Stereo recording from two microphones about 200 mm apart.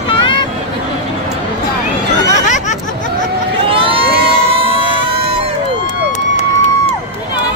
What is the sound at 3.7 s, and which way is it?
Vehicle, 25° right (ahead or behind).